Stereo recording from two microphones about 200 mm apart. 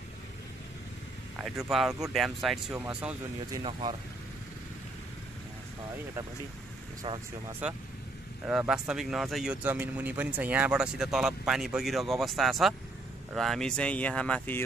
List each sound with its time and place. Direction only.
1.9 s speech: 15° right (ahead or behind)
2.1 s speech: centre (ahead or behind)
3.5 s speech: 25° right (ahead or behind)
7.0 s speech: 25° right (ahead or behind)
7.6 s speech: 5° right (ahead or behind)